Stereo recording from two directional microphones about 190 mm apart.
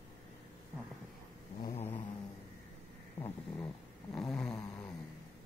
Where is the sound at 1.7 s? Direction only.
30° left (ahead or behind).